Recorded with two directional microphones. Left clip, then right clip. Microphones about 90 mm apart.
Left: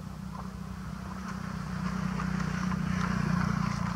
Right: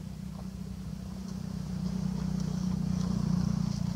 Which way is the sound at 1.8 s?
30° left (ahead or behind).